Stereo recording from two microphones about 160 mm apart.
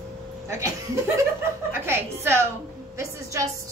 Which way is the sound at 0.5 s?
20° right (ahead or behind).